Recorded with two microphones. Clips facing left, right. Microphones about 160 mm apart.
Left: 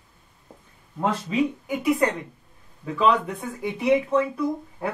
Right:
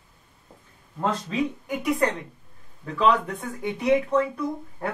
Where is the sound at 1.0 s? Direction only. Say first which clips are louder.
Left 2 dB; 10° left (ahead or behind).